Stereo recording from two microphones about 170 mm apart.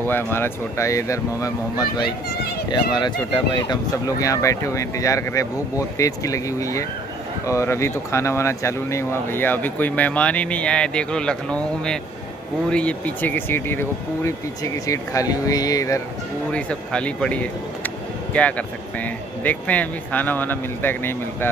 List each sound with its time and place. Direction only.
0.0 s speech: 10° left (ahead or behind)
16.5 s speech: 5° left (ahead or behind)